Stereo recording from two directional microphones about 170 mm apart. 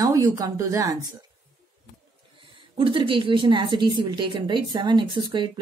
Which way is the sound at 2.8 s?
30° right (ahead or behind).